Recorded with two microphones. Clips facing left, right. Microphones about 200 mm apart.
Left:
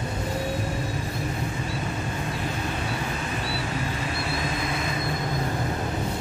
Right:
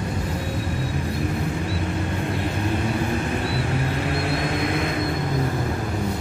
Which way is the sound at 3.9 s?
60° right (ahead or behind).